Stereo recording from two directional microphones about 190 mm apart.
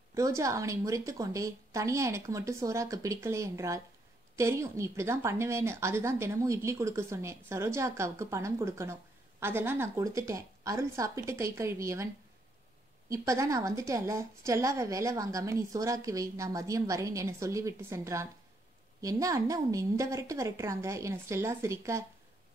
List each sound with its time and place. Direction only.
0.1 s speech: 15° right (ahead or behind)
13.1 s speech: 15° right (ahead or behind)